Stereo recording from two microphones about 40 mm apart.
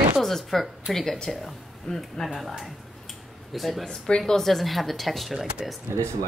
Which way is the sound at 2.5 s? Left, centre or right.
Centre.